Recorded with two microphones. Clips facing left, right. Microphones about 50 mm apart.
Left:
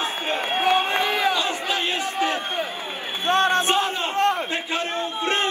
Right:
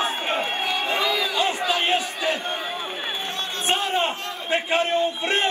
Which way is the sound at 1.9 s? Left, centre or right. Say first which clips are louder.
Even; left.